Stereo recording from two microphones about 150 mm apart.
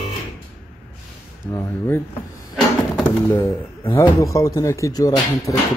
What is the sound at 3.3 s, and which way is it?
A man's voice, 15° left (ahead or behind).